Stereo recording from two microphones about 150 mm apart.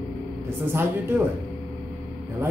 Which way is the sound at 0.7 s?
15° right (ahead or behind).